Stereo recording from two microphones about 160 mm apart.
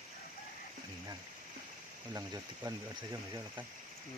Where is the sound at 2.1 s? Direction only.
25° right (ahead or behind).